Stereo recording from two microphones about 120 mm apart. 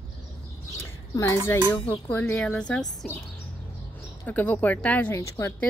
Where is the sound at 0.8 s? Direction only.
20° left (ahead or behind).